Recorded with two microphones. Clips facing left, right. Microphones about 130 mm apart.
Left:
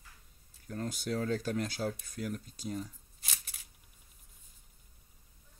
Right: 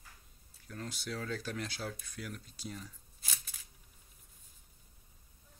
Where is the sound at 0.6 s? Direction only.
40° left (ahead or behind).